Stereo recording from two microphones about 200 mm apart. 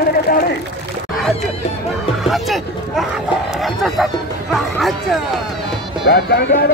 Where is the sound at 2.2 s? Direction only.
Centre (ahead or behind).